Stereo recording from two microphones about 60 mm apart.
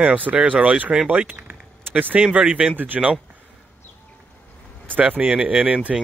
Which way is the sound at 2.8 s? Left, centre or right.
Right.